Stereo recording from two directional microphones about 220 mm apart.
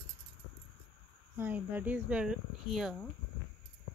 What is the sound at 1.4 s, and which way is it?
Speech, 10° right (ahead or behind).